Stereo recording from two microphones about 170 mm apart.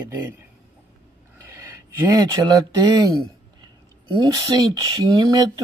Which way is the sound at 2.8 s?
25° right (ahead or behind).